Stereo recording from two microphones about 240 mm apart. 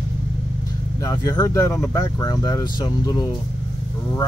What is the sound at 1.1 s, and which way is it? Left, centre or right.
Speech, centre.